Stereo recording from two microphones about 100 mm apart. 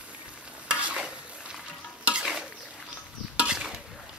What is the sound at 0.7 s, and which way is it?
Stir, 10° right (ahead or behind).